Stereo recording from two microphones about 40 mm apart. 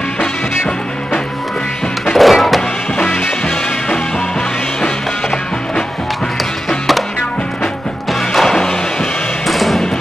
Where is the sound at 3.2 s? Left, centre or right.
Left.